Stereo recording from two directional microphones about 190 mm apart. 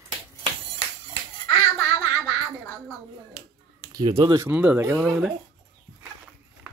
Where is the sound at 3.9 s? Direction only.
20° right (ahead or behind).